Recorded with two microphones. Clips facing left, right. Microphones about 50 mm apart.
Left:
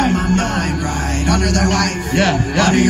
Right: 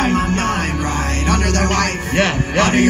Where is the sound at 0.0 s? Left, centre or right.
Right.